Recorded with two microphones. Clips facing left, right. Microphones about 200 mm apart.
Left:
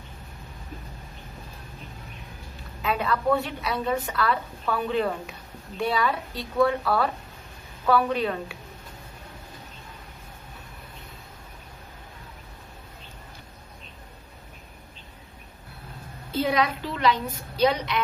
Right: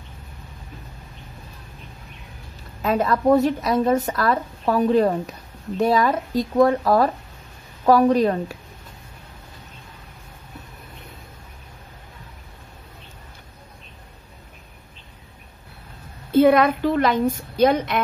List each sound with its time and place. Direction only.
2.8 s a woman's voice: 40° right (ahead or behind)
16.3 s a woman's voice: 55° right (ahead or behind)